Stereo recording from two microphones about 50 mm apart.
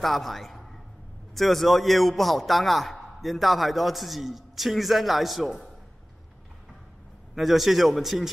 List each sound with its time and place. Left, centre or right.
0.0 s a man's voice: centre
7.3 s a man's voice: centre